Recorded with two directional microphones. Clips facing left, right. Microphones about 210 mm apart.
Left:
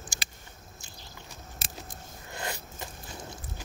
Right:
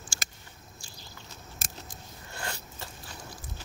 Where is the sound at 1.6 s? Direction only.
45° right (ahead or behind).